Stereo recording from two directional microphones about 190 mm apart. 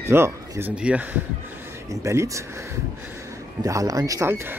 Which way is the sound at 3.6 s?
15° right (ahead or behind).